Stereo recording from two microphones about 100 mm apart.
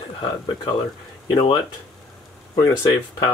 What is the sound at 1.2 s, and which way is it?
Speech, 45° left (ahead or behind).